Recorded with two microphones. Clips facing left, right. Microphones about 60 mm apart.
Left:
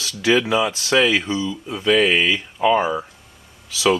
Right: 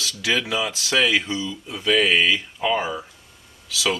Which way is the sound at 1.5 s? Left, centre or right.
Centre.